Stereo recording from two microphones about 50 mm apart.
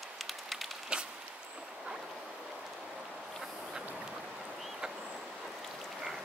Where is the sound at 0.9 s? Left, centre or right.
Centre.